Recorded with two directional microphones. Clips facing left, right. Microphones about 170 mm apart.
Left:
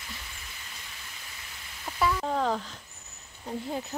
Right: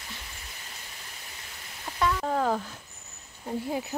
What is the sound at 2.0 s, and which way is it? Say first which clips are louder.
Speech: right 1 dB; centre (ahead or behind).